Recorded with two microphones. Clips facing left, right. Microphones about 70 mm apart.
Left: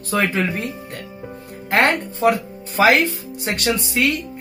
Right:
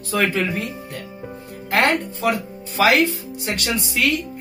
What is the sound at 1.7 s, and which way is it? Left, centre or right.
A man's voice, left.